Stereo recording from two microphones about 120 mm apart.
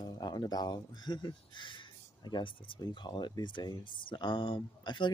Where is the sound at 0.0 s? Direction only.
35° left (ahead or behind).